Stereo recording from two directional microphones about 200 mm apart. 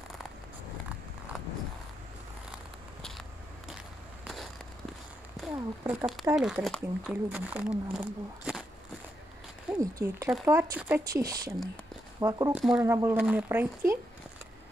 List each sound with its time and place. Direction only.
5.4 s a sound: 5° right (ahead or behind)
6.2 s speech: 5° right (ahead or behind)
9.7 s speech: 15° right (ahead or behind)
12.5 s speech: 5° right (ahead or behind)